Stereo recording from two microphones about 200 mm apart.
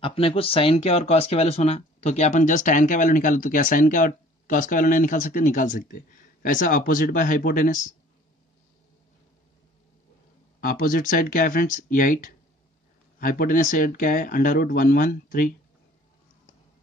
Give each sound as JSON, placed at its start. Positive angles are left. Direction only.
{"t": 0.0, "sound": "speech", "side_deg": 25}
{"t": 10.6, "sound": "speech", "side_deg": 45}